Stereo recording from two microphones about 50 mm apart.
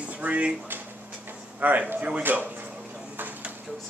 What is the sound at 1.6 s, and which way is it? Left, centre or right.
Speech, right.